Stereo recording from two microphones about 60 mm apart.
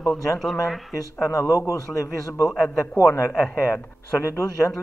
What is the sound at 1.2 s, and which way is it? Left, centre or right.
A man's voice, left.